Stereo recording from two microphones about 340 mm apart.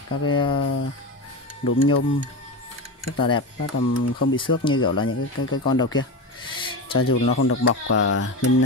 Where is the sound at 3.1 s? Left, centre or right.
Centre.